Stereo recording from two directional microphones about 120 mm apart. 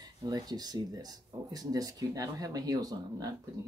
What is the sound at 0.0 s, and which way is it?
Speech, 35° right (ahead or behind).